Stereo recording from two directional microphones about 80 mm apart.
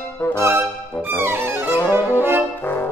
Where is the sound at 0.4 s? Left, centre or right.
Right.